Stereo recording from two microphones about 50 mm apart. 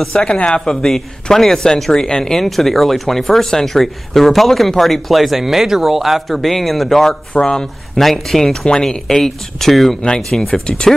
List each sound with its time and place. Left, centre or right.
0.1 s speech: centre
7.3 s speech: centre
7.9 s speech: centre